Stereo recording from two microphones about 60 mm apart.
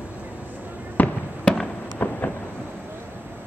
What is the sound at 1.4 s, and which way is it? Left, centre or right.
Fireworks, centre.